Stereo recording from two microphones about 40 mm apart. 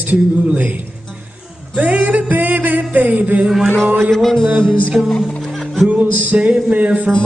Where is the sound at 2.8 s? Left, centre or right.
Right.